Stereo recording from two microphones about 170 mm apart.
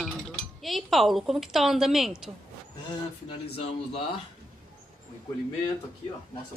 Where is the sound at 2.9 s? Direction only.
35° left (ahead or behind).